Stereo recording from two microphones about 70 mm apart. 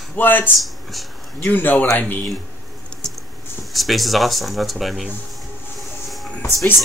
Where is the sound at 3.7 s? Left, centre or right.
Centre.